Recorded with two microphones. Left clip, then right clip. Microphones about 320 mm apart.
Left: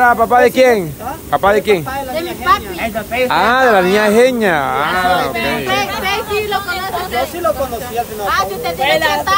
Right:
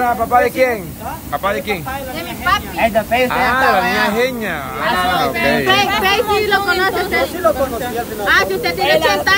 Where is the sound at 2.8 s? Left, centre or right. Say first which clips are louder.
Right 4 dB; right.